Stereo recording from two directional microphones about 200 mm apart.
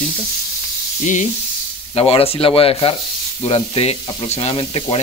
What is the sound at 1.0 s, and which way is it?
Frying, 40° left (ahead or behind).